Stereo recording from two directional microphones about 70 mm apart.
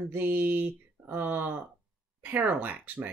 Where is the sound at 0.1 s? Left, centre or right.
Right.